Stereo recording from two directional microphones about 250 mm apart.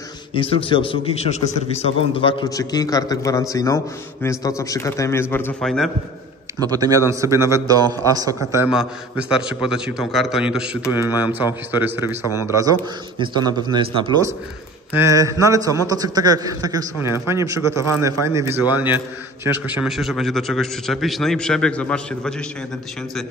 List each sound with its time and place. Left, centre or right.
0.3 s a man's voice: left; by 5.9 s centre
6.7 s a man's voice: centre